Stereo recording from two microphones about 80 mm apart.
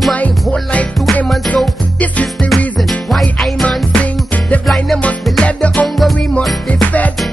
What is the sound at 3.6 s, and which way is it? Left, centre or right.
Music, centre.